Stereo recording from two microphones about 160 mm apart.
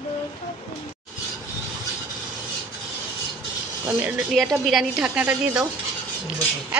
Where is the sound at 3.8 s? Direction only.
10° right (ahead or behind).